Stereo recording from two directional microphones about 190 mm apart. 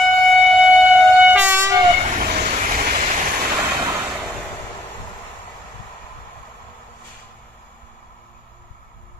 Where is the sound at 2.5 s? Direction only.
40° right (ahead or behind).